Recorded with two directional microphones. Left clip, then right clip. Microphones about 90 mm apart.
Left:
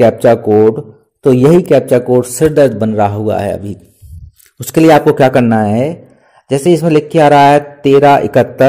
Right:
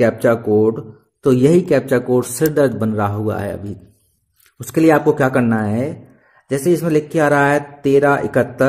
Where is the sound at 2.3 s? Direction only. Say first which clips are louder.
Left 8 dB; 5° left (ahead or behind).